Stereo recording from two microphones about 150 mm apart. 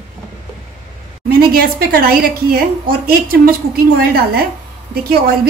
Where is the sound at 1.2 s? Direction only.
85° right.